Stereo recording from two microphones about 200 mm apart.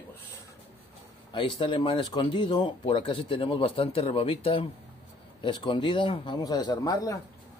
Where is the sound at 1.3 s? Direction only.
25° left (ahead or behind).